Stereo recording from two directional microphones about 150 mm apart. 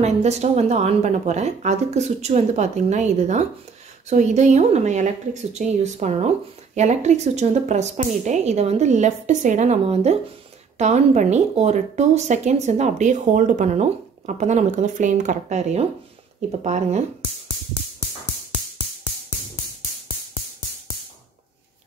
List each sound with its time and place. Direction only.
0.0 s speech: 45° right (ahead or behind)